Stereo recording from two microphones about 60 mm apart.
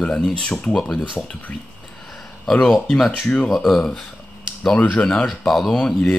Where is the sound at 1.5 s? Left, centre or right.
Left.